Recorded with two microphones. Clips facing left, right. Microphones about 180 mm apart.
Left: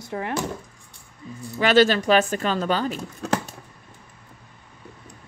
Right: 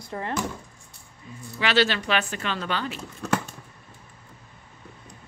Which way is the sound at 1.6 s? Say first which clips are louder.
Left 6 dB; 45° left (ahead or behind).